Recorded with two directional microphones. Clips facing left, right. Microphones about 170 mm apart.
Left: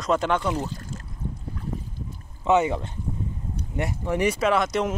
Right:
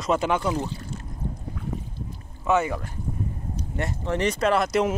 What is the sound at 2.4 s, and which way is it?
Speech, 20° left (ahead or behind).